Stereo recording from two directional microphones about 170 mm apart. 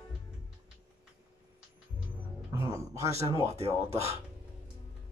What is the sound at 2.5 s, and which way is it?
Speech, 15° right (ahead or behind).